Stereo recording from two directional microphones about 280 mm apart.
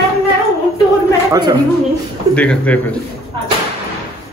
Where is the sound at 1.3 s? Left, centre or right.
Centre.